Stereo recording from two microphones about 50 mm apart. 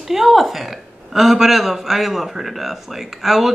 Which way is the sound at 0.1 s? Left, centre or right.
Centre.